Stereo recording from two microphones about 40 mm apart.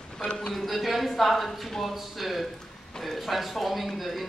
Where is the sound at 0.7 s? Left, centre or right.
Centre.